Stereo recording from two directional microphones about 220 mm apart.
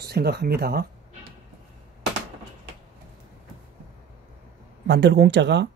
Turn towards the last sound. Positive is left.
turn(degrees=-50)  # may be behind; listen again after turning